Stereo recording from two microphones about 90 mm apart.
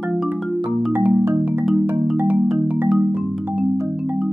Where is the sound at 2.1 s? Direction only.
15° right (ahead or behind).